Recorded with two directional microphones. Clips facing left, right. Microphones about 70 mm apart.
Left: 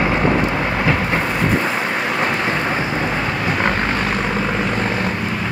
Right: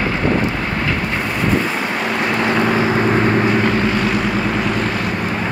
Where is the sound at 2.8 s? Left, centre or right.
Right.